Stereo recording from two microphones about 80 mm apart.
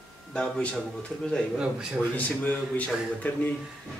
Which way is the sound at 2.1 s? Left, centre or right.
Centre.